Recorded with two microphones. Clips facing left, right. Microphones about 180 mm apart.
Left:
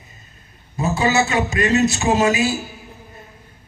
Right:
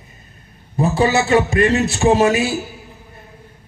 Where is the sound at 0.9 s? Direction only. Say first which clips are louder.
Right 3 dB; 55° right (ahead or behind).